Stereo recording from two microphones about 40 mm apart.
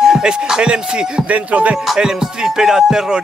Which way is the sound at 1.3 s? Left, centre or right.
Right.